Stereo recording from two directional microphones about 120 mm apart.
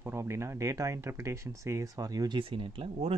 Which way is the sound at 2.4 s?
45° right (ahead or behind).